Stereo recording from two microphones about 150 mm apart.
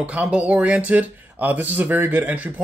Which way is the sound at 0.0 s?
10° right (ahead or behind).